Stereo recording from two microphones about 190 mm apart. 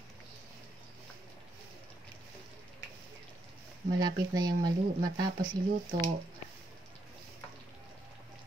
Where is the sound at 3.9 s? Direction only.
20° right (ahead or behind).